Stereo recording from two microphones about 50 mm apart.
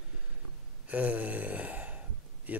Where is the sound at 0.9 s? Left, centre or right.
Right.